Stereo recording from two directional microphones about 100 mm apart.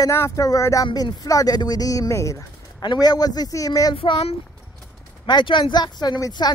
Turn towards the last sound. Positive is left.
turn(degrees=50)  # may be behind; listen again after turning